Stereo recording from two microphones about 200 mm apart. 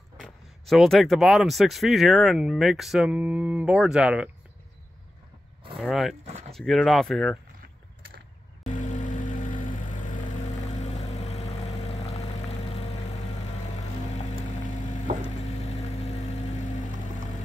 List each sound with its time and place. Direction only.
0.2 s speech: centre (ahead or behind)
5.8 s speech: centre (ahead or behind)
8.6 s vehicle: 40° left (ahead or behind)